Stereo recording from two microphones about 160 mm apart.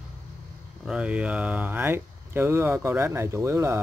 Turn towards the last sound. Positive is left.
turn(degrees=-15)  # may be behind; listen again after turning